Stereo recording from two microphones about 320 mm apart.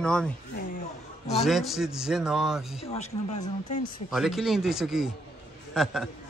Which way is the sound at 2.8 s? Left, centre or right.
Centre.